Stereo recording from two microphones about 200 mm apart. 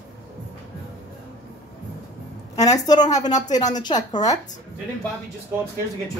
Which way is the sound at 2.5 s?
20° left (ahead or behind).